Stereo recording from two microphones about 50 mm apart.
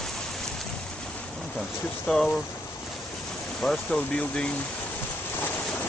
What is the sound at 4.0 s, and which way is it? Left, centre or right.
Speech, left.